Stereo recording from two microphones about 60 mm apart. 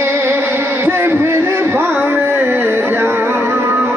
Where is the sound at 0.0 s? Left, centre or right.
Right.